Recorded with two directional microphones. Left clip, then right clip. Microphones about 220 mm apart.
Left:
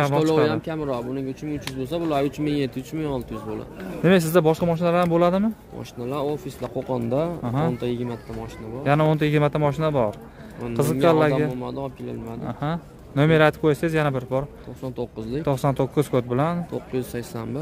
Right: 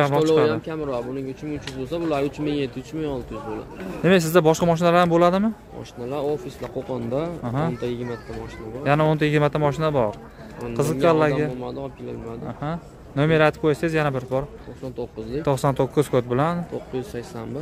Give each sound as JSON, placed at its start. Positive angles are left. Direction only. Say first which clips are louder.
{"t": 0.0, "sound": "speech", "louder": "right 2 dB", "side_deg": 0}
{"t": 0.5, "sound": "speech", "louder": "even", "side_deg": 50}
{"t": 4.0, "sound": "speech", "louder": "right 1 dB", "side_deg": 5}
{"t": 6.0, "sound": "speech", "louder": "right 1 dB", "side_deg": 50}
{"t": 7.4, "sound": "a man's voice", "louder": "left 1 dB", "side_deg": 5}
{"t": 7.8, "sound": "speech", "louder": "even", "side_deg": 45}
{"t": 8.8, "sound": "a man's voice", "louder": "right 1 dB", "side_deg": 5}
{"t": 11.6, "sound": "speech", "louder": "left 1 dB", "side_deg": 50}
{"t": 12.4, "sound": "a man's voice", "louder": "left 3 dB", "side_deg": 15}
{"t": 15.0, "sound": "speech", "louder": "even", "side_deg": 50}
{"t": 15.4, "sound": "speech", "louder": "right 2 dB", "side_deg": 0}
{"t": 16.9, "sound": "speech", "louder": "left 3 dB", "side_deg": 50}